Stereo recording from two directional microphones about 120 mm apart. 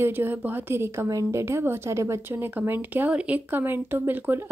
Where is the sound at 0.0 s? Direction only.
15° right (ahead or behind).